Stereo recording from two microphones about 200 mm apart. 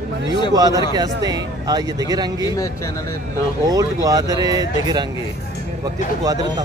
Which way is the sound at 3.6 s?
20° right (ahead or behind).